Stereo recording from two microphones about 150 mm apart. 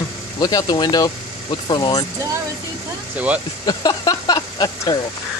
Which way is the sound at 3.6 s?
25° left (ahead or behind).